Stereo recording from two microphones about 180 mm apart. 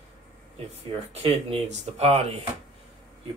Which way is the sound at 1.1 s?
35° right (ahead or behind).